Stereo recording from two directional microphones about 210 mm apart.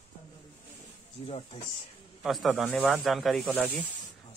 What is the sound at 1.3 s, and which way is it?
Speech, 30° left (ahead or behind).